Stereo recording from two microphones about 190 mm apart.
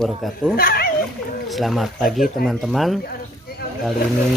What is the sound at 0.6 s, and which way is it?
Speech, 50° left (ahead or behind).